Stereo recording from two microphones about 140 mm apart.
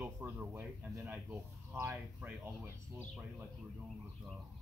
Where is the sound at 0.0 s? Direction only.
15° right (ahead or behind).